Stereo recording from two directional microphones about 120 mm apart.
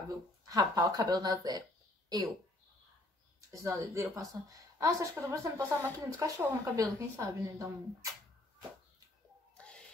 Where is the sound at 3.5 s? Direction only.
25° right (ahead or behind).